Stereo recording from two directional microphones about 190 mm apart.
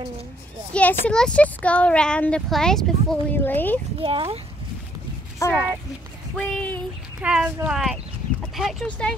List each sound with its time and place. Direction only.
1.0 s speech: 5° left (ahead or behind)
4.0 s speech: 30° right (ahead or behind)
5.4 s speech: 15° left (ahead or behind)
7.2 s speech: 5° right (ahead or behind)